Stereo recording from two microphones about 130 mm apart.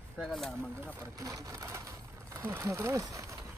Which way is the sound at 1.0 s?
25° right (ahead or behind).